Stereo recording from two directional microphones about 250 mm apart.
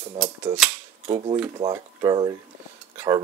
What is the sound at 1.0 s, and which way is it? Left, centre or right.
Speech, right.